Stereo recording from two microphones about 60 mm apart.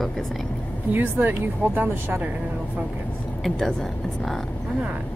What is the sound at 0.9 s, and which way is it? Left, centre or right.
Speech, right.